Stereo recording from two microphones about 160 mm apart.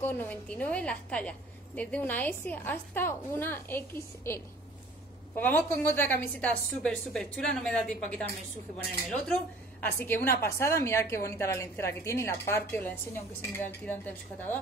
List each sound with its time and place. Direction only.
0.0 s a woman's voice: 10° left (ahead or behind)